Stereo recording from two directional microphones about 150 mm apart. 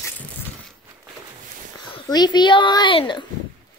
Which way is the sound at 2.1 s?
25° left (ahead or behind).